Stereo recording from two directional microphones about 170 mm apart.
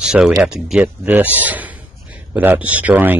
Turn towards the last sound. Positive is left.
turn(degrees=-10)  # may be behind; listen again after turning